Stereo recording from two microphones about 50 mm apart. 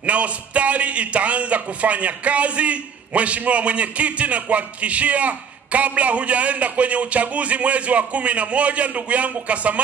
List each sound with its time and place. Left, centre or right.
0.0 s a man's voice: right